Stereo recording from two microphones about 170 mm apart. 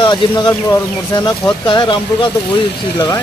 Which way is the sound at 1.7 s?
25° left (ahead or behind).